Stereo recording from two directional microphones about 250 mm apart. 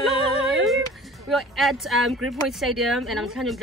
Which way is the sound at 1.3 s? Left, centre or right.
Centre.